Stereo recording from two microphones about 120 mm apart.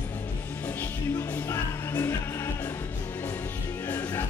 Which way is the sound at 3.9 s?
15° left (ahead or behind).